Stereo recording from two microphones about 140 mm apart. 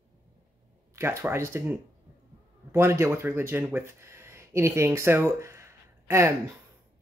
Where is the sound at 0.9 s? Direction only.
20° right (ahead or behind).